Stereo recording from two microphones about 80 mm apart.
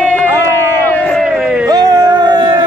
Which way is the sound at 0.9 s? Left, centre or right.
Left.